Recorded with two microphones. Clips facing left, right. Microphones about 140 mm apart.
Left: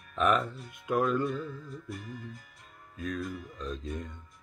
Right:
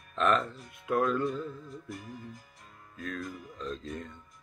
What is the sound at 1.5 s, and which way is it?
Music, 30° right (ahead or behind).